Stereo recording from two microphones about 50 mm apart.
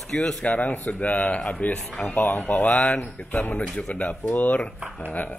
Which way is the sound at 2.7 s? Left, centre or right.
Left.